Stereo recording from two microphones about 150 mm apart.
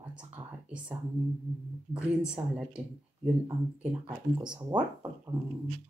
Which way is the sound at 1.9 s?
5° right (ahead or behind).